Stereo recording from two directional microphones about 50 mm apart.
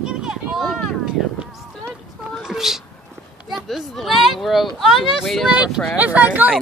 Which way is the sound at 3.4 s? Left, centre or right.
Centre.